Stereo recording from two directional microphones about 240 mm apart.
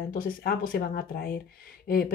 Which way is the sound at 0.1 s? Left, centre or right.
Left.